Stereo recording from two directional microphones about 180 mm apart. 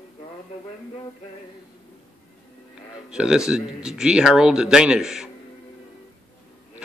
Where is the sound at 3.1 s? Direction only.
5° right (ahead or behind).